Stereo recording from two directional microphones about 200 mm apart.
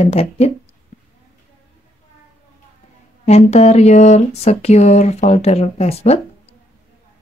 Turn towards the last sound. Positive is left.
turn(degrees=30)  # may be behind; listen again after turning